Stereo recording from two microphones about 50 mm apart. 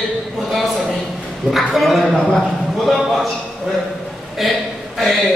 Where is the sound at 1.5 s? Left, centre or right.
Centre.